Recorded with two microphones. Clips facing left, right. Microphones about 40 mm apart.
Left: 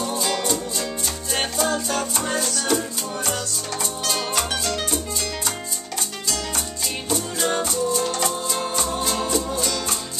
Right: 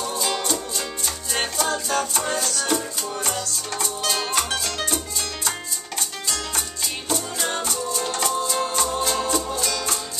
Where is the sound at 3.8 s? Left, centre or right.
Centre.